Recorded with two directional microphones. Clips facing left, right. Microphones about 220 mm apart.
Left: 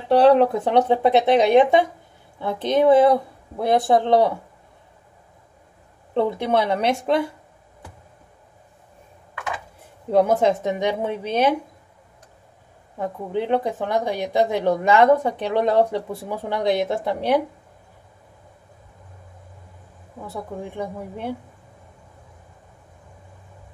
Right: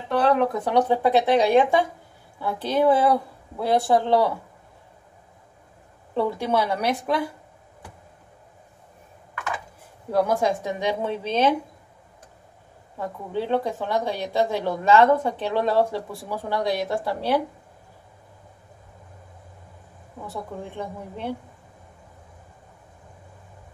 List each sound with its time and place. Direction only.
0.1 s speech: 30° left (ahead or behind)
6.1 s speech: 20° left (ahead or behind)
10.1 s a woman's voice: 25° left (ahead or behind)
13.0 s a woman's voice: 20° left (ahead or behind)
20.2 s a woman's voice: 10° left (ahead or behind)